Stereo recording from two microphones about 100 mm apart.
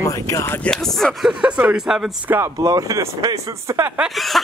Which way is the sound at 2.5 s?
35° right (ahead or behind).